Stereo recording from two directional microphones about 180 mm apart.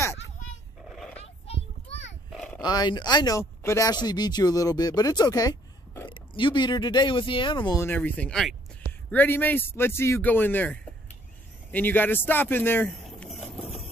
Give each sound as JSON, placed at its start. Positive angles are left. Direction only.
{"t": 0.8, "sound": "dog", "side_deg": 0}
{"t": 1.2, "sound": "a sound", "side_deg": 35}
{"t": 2.3, "sound": "dog", "side_deg": 5}
{"t": 2.6, "sound": "speech", "side_deg": 25}
{"t": 7.8, "sound": "speech", "side_deg": 10}